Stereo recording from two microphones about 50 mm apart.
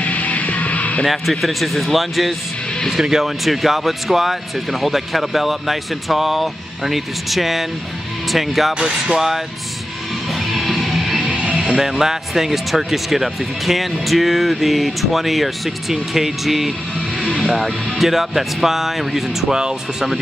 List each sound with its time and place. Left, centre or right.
0.0 s music: left
1.0 s speech: centre
8.7 s speech: centre
10.4 s music: centre
11.1 s music: centre
11.6 s speech: centre
19.5 s speech: centre